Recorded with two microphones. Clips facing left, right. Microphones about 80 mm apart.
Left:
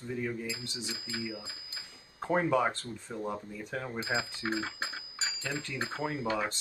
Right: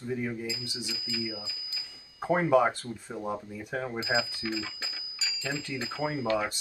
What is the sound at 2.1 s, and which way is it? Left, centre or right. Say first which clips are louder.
Speech: right 4 dB; centre.